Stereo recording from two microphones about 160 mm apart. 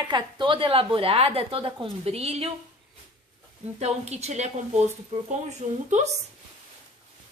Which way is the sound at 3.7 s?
40° right (ahead or behind).